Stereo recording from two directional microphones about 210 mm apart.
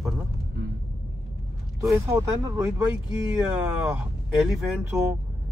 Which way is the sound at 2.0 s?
15° right (ahead or behind).